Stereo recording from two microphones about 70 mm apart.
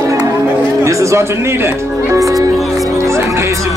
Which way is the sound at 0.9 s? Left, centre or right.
Right.